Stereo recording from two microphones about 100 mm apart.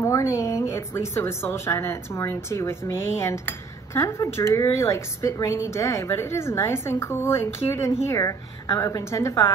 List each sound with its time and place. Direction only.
0.0 s a woman's voice: 30° left (ahead or behind)